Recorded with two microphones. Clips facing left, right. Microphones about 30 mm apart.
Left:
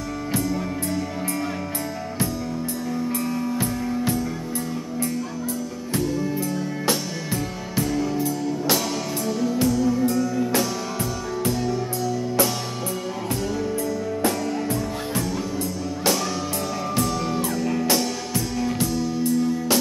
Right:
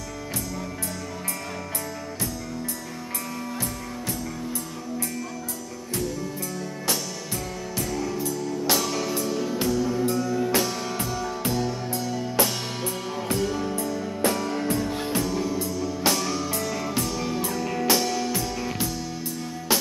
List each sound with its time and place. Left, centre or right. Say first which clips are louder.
6.1 s music: left 7 dB; left; by 12.1 s centre
13.3 s music: even; centre
16.9 s music: left 3 dB; centre